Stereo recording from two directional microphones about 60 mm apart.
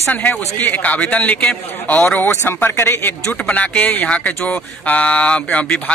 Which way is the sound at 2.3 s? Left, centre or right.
Left.